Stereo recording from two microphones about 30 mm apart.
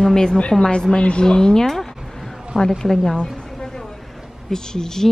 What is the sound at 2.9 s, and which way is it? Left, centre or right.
Speech, centre.